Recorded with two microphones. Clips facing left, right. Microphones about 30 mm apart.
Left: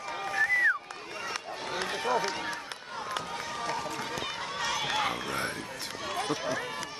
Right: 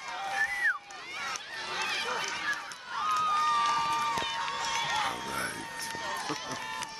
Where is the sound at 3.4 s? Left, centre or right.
Right.